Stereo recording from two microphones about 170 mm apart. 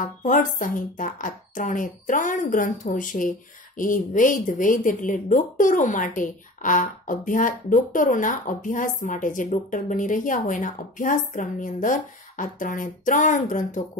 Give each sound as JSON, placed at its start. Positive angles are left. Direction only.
{"t": 0.0, "sound": "speech", "side_deg": 50}